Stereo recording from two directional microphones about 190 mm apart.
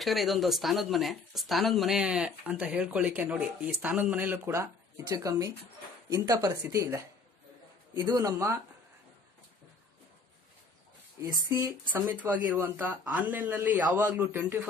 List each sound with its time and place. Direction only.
0.0 s speech: centre (ahead or behind); by 7.0 s 15° right (ahead or behind)
8.0 s speech: 20° right (ahead or behind)
11.4 s speech: 15° right (ahead or behind)